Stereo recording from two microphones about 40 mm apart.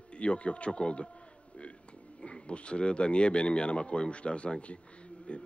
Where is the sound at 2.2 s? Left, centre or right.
Left.